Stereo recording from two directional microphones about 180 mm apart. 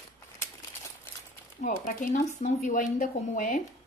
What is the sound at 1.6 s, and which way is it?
Speech, 50° left (ahead or behind).